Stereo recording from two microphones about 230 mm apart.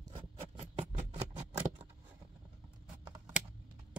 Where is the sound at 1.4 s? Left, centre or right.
Centre.